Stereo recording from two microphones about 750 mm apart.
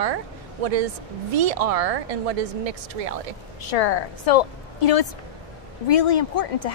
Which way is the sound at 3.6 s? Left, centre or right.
Left.